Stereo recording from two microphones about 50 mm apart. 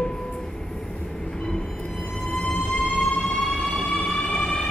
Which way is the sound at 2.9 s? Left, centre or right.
Centre.